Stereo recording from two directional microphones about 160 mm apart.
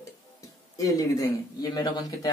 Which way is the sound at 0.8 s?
20° left (ahead or behind).